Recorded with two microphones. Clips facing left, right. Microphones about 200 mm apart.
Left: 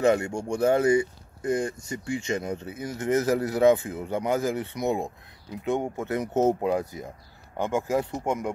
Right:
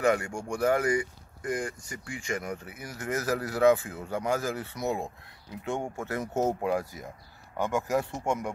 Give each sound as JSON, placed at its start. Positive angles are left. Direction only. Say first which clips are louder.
{"t": 0.0, "sound": "speech", "louder": "left 4 dB", "side_deg": 25}